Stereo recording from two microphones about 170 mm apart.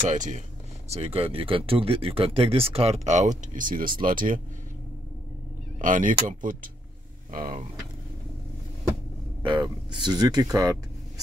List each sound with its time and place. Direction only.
0.0 s speech: 45° right (ahead or behind)
5.8 s speech: 50° right (ahead or behind)
9.4 s speech: 30° right (ahead or behind)